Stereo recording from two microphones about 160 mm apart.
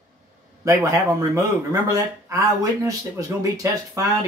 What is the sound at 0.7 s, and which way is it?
Speech, 20° right (ahead or behind).